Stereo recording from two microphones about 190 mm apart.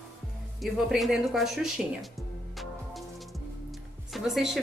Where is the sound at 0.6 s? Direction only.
Centre (ahead or behind).